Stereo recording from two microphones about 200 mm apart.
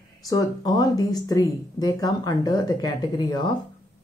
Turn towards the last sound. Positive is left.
turn(degrees=20)  # may be behind; listen again after turning